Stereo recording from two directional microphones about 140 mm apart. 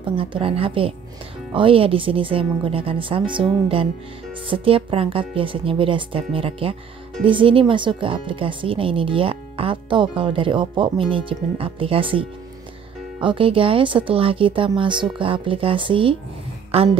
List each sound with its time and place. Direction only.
0.0 s speech: 40° right (ahead or behind)